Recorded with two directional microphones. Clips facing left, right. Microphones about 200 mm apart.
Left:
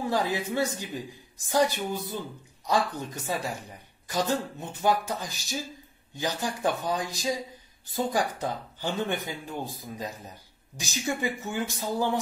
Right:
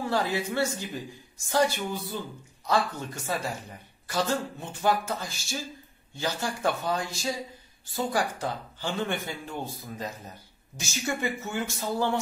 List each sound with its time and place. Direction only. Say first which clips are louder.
0.1 s speech: even; 15° left (ahead or behind)